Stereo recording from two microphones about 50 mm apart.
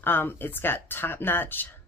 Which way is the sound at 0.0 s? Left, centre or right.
Left.